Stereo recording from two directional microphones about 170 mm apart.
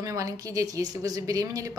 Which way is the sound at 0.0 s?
20° right (ahead or behind).